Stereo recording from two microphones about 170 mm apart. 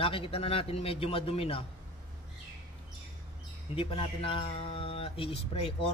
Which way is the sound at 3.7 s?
35° left (ahead or behind).